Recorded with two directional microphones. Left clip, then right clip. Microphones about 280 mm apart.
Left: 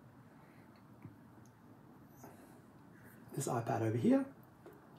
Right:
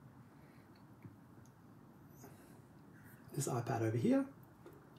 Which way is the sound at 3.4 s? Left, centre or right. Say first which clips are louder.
Left 3 dB; centre.